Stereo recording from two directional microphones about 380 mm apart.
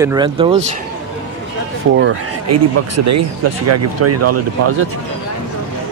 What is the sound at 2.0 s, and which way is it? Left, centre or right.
Speech, right.